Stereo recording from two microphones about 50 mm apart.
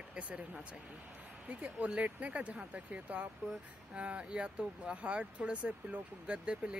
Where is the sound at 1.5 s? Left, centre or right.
Right.